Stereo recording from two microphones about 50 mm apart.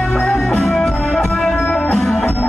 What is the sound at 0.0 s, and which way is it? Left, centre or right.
Music, centre.